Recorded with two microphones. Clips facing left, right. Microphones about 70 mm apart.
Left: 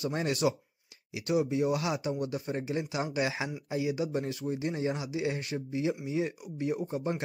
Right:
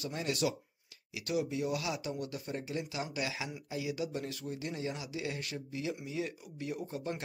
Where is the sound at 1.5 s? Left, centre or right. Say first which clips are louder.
Left 6 dB; left.